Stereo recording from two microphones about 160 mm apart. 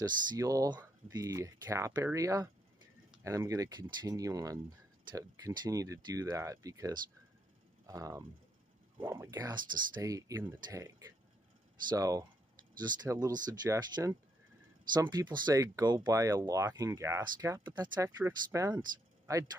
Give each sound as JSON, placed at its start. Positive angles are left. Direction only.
{"t": 0.4, "sound": "speech", "side_deg": -20}